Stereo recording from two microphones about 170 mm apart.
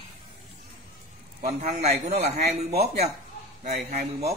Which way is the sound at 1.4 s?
45° right (ahead or behind).